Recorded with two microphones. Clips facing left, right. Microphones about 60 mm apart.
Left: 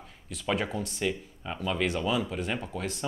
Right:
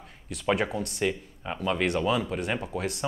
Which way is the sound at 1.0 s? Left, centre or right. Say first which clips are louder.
Right 3 dB; centre.